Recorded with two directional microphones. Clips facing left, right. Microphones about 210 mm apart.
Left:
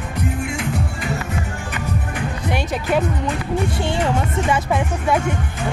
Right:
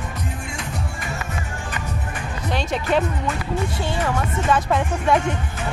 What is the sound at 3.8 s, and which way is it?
Speech, 20° left (ahead or behind).